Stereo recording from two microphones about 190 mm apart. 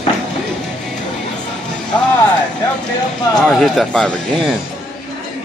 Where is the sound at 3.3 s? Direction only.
5° left (ahead or behind).